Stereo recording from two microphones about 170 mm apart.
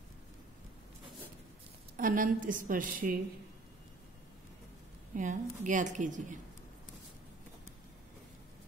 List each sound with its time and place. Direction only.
2.0 s a woman's voice: 50° right (ahead or behind)
5.1 s a woman's voice: 50° right (ahead or behind)